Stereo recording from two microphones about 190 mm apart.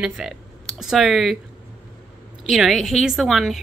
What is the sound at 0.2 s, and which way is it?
A woman's voice, 5° right (ahead or behind).